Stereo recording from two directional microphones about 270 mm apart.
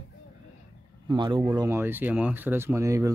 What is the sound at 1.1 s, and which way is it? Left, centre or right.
Speech, centre.